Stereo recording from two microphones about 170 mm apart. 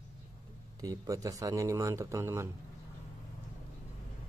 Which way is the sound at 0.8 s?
20° right (ahead or behind).